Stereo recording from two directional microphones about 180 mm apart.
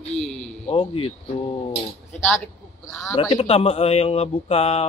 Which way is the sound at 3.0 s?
25° left (ahead or behind).